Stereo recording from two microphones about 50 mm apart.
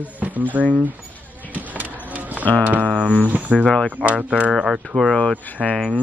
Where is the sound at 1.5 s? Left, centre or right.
Right.